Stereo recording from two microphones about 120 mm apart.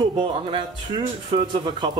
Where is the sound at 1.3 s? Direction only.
40° right (ahead or behind).